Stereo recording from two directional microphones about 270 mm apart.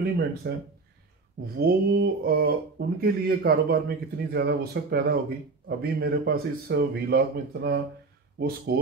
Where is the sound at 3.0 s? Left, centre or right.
Right.